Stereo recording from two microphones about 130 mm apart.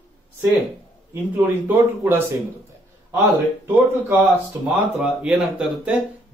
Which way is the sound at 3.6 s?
15° right (ahead or behind).